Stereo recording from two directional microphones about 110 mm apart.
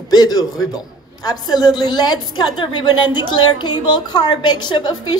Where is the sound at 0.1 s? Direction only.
40° left (ahead or behind).